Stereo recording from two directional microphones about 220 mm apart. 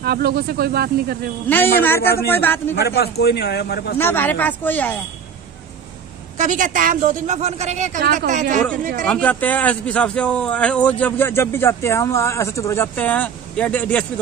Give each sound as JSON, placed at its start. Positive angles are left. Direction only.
{"t": 0.0, "sound": "speech", "side_deg": -45}
{"t": 1.5, "sound": "a man's voice", "side_deg": 10}
{"t": 2.8, "sound": "a man's voice", "side_deg": 50}
{"t": 4.0, "sound": "a man's voice", "side_deg": 10}
{"t": 6.3, "sound": "a woman's voice", "side_deg": -35}
{"t": 9.0, "sound": "a man's voice", "side_deg": 5}